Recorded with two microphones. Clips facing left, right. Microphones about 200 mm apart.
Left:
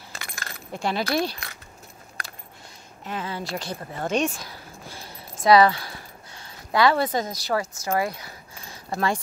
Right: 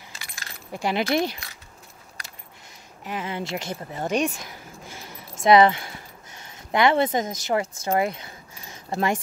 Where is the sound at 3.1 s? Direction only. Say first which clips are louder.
Right 1 dB; 15° right (ahead or behind).